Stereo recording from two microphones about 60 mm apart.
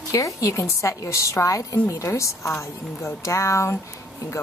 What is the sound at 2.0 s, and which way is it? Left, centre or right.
A woman's voice, left.